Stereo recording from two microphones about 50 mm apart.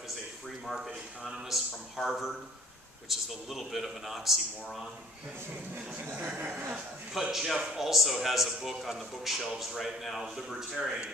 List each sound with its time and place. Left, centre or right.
0.7 s a man's voice: centre
6.3 s speech: right
6.7 s a man's voice: centre